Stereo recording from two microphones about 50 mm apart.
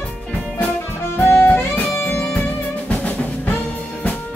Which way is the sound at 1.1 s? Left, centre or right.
Left.